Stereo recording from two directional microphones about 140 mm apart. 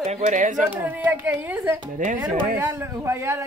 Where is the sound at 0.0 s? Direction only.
60° right (ahead or behind).